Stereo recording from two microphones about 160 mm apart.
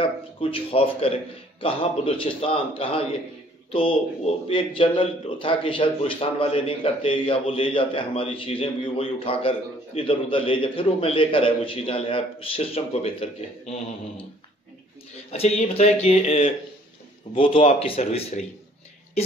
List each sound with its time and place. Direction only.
0.0 s a man's voice: 35° left (ahead or behind)
15.3 s a man's voice: 40° left (ahead or behind)